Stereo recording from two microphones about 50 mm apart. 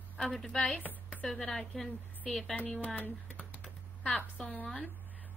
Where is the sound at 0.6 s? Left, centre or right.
Left.